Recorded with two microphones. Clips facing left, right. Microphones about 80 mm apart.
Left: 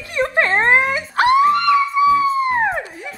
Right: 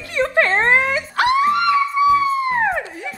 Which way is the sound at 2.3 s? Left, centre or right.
Left.